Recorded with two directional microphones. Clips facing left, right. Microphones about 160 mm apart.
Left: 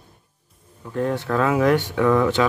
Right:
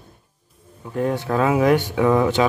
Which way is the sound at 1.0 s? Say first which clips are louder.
Right 1 dB; 15° right (ahead or behind).